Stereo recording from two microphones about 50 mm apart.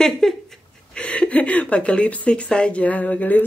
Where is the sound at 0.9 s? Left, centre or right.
Left.